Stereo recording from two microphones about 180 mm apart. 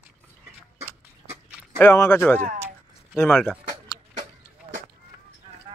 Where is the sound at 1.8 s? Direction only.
15° left (ahead or behind).